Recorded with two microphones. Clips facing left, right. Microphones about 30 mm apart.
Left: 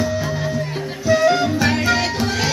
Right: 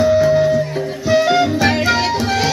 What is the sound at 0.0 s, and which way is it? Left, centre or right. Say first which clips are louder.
Music: right 10 dB; centre.